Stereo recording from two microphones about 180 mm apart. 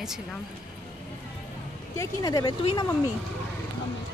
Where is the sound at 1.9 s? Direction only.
15° left (ahead or behind).